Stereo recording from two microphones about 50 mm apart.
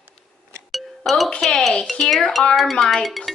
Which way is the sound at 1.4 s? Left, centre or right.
Centre.